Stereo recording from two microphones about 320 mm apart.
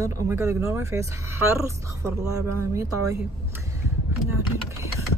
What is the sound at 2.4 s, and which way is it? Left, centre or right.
Speech, right.